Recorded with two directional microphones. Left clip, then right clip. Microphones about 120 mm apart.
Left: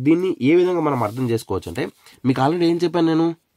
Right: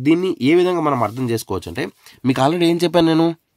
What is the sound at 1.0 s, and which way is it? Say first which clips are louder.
Speech: right 1 dB; 25° right (ahead or behind).